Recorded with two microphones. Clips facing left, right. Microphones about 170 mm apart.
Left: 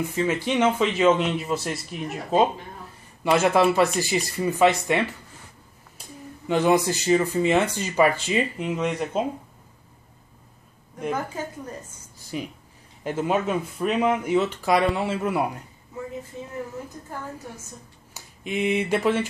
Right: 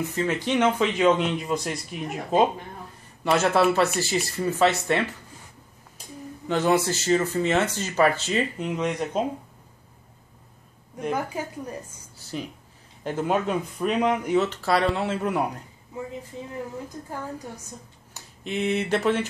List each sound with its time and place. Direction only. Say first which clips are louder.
0.1 s speech: even; 5° left (ahead or behind)
3.3 s speech: left 1 dB; 10° left (ahead or behind)
6.4 s speech: left 2 dB; 10° left (ahead or behind)
11.1 s a woman's voice: even; 10° right (ahead or behind)
12.3 s speech: left 1 dB; 5° left (ahead or behind)
18.1 s speech: left 1 dB; 10° left (ahead or behind)